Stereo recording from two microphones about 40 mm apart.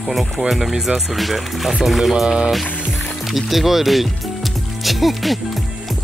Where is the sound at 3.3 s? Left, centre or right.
Centre.